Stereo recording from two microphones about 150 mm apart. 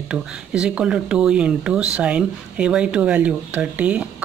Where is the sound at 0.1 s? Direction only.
5° right (ahead or behind).